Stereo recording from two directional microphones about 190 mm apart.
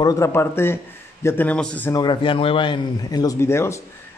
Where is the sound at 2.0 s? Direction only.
25° left (ahead or behind).